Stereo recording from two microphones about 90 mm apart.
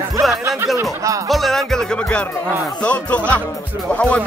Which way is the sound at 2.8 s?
15° left (ahead or behind).